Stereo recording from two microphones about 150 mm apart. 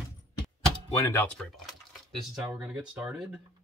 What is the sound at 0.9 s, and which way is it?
Speech, 15° left (ahead or behind).